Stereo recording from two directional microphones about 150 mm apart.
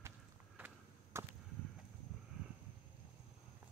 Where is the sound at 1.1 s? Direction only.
20° right (ahead or behind).